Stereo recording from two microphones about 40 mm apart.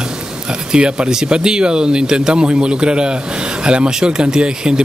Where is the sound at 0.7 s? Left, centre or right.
Right.